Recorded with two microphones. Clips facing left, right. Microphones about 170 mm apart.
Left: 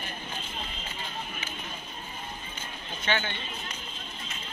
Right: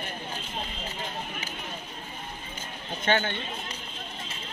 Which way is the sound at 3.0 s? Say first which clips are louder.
Right 4 dB; 50° right (ahead or behind).